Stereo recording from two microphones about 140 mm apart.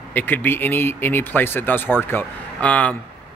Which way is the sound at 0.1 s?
15° left (ahead or behind).